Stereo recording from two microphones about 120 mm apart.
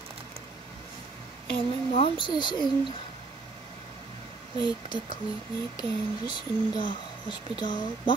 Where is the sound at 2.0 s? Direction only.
40° left (ahead or behind).